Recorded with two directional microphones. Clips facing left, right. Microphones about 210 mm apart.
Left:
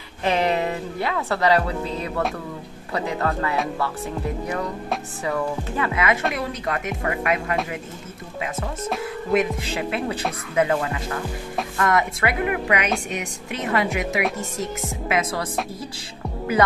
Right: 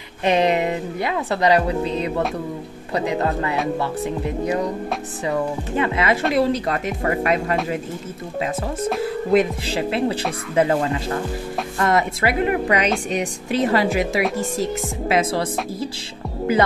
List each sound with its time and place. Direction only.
0.2 s speech: 20° right (ahead or behind)
9.0 s speech: 35° right (ahead or behind)